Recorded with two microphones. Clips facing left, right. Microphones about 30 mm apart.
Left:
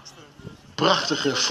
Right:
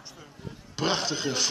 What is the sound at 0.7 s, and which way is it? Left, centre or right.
Speech, left.